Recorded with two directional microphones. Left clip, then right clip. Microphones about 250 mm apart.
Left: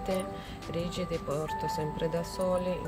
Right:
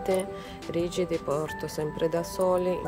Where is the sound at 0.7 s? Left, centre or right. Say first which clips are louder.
Right 6 dB; centre.